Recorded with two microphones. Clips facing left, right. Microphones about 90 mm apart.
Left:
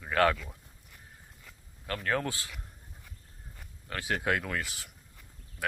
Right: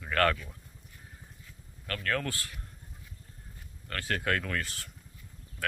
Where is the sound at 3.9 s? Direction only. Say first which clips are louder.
Left 1 dB; 15° left (ahead or behind).